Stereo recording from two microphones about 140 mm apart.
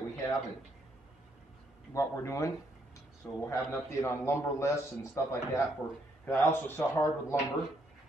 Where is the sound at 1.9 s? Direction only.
20° left (ahead or behind).